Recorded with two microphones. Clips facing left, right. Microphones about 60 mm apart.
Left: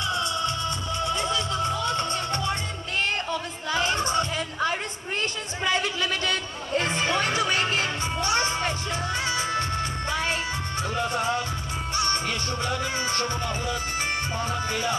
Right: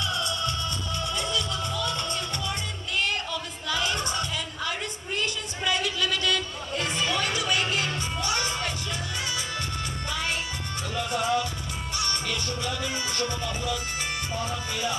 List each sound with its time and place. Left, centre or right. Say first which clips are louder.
0.9 s music: left 3 dB; left
11.0 s music: right 1 dB; left